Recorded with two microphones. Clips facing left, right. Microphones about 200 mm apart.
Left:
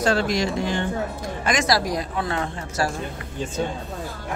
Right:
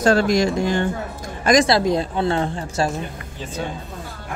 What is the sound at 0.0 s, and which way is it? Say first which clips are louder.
Speech: right 5 dB; 45° right (ahead or behind).